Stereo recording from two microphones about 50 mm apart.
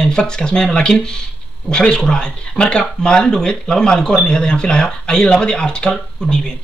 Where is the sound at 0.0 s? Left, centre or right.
Centre.